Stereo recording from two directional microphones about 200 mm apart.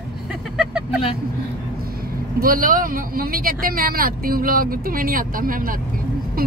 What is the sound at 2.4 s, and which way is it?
Speech, 45° right (ahead or behind).